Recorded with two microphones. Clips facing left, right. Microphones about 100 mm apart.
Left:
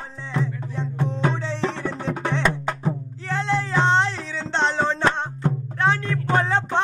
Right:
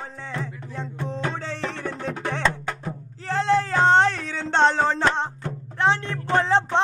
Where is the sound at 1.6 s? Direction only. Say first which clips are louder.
Left 4 dB; 25° left (ahead or behind).